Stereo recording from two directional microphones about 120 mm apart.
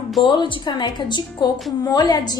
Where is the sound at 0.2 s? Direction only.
40° left (ahead or behind).